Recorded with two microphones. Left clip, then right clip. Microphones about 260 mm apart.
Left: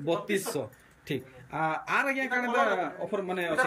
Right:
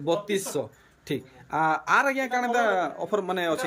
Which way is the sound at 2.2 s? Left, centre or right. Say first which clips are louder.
Right 2 dB; right.